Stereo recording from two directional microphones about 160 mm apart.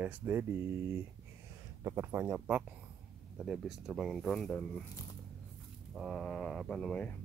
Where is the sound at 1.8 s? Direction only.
15° right (ahead or behind); by 4.8 s 5° left (ahead or behind).